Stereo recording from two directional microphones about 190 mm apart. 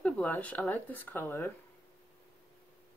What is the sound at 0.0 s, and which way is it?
Speech, centre (ahead or behind).